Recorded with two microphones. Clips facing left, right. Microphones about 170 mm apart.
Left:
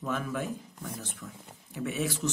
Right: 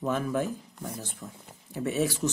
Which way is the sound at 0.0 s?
40° right (ahead or behind).